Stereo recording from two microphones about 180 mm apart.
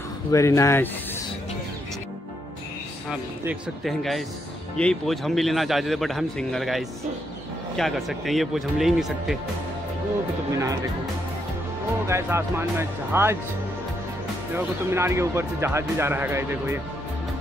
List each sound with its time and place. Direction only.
0.3 s speech: 15° left (ahead or behind)
3.1 s a man's voice: centre (ahead or behind)
12.1 s speech: 15° right (ahead or behind)
14.5 s speech: 15° right (ahead or behind)